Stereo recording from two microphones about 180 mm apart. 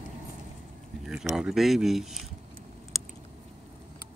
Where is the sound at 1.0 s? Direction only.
5° right (ahead or behind).